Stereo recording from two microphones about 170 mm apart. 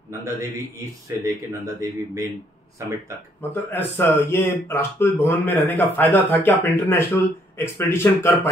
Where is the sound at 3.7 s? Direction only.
15° left (ahead or behind).